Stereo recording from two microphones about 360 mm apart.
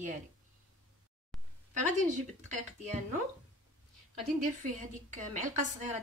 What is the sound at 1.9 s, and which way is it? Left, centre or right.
A woman's voice, centre.